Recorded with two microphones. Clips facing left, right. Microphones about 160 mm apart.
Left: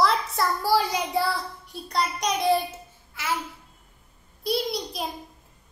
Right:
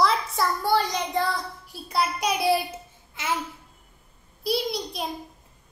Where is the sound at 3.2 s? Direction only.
20° right (ahead or behind).